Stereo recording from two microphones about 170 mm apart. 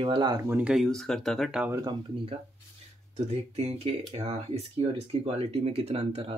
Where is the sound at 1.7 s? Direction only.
25° right (ahead or behind).